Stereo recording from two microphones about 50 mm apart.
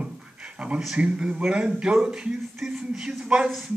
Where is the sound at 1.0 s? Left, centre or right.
Right.